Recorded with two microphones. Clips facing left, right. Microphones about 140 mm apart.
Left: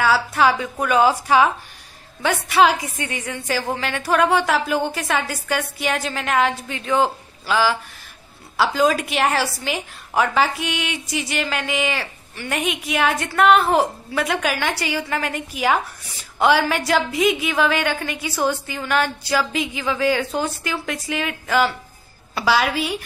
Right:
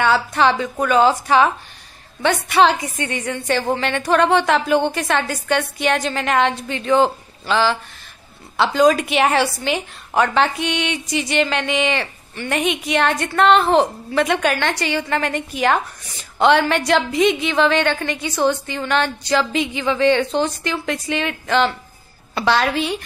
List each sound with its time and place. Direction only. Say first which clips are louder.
0.0 s a woman's voice: right 1 dB; 5° left (ahead or behind)